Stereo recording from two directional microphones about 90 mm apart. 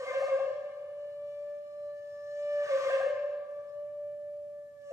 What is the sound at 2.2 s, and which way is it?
Music, 30° right (ahead or behind).